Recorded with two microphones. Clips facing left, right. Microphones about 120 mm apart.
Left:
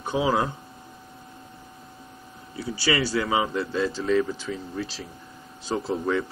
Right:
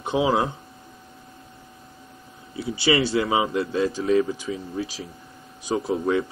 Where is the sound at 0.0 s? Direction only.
20° right (ahead or behind).